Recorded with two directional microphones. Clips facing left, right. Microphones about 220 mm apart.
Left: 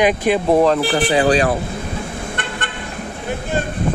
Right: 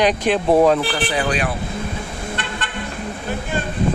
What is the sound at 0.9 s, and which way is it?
Speech, 30° left (ahead or behind).